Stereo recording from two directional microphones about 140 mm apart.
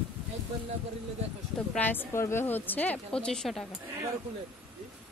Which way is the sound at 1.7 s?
15° left (ahead or behind).